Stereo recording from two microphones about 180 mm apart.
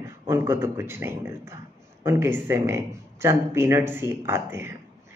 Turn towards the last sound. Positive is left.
turn(degrees=-15)  # may be behind; listen again after turning